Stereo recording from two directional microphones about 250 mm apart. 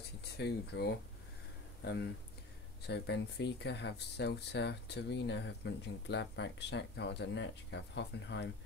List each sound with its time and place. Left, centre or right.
0.2 s speech: left
2.9 s speech: left